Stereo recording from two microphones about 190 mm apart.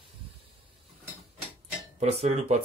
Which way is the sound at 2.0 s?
35° right (ahead or behind).